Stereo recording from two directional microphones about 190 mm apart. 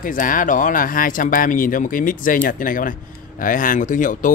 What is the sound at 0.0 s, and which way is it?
Speech, 45° left (ahead or behind).